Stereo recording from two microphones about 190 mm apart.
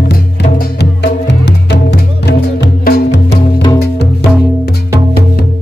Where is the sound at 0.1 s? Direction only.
55° left (ahead or behind).